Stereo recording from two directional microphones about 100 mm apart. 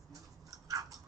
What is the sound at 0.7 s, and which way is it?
Biting, 35° right (ahead or behind).